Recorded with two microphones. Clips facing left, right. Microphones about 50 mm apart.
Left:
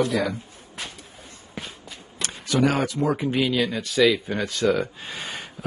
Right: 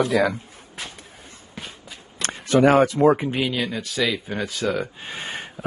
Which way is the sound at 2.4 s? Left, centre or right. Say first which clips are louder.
Right 6 dB; right.